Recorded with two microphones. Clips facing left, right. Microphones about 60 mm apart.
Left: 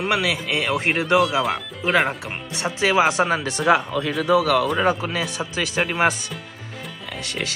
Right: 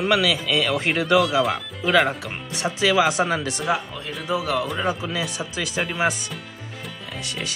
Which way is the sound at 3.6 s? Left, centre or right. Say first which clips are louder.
Left 11 dB; left.